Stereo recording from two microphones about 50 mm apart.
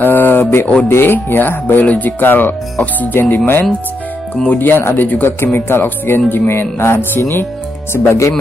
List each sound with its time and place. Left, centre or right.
0.0 s mantra: left
0.8 s speech: left
5.0 s speech: left
5.4 s speech: left